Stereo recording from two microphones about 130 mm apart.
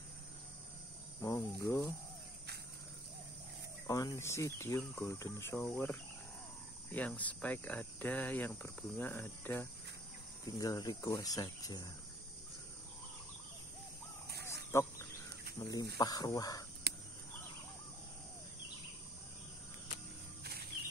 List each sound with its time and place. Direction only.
1.2 s speech: 25° left (ahead or behind)
3.8 s speech: 25° left (ahead or behind)
10.6 s speech: 25° left (ahead or behind)
14.4 s wild animals: 20° left (ahead or behind)
15.6 s speech: 30° left (ahead or behind)